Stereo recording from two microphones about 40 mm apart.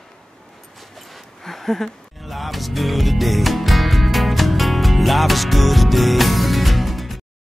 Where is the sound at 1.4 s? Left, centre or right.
Centre.